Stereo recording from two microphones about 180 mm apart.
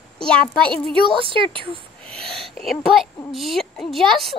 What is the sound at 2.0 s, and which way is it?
Speech, centre (ahead or behind).